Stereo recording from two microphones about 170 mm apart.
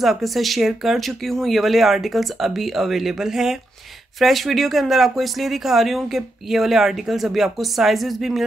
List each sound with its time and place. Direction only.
0.0 s speech: centre (ahead or behind)